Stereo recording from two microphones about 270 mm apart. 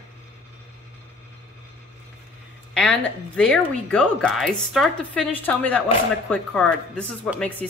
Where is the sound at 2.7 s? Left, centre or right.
Centre.